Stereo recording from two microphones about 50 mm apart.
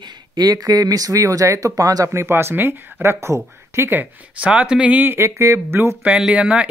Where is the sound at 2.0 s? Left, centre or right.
Right.